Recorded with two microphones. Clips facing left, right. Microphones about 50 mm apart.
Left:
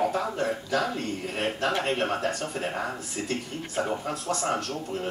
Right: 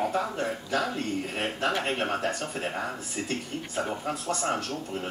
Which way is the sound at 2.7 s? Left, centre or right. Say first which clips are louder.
Left 1 dB; centre.